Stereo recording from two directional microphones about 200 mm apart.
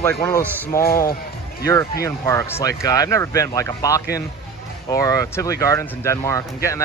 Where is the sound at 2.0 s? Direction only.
15° left (ahead or behind).